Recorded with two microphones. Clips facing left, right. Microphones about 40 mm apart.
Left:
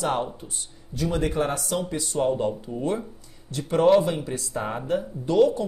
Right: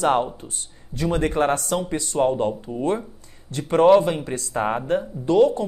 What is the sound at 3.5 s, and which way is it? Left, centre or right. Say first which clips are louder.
A woman's voice: right 4 dB; right.